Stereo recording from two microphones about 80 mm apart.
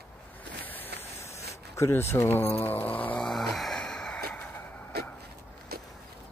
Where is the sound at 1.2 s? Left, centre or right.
Left.